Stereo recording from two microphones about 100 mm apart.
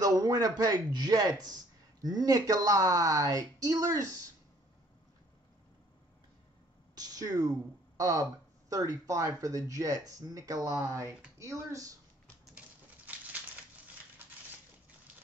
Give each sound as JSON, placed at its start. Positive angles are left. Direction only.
{"t": 0.0, "sound": "speech", "side_deg": -35}
{"t": 7.0, "sound": "speech", "side_deg": -40}
{"t": 12.5, "sound": "a sound", "side_deg": -15}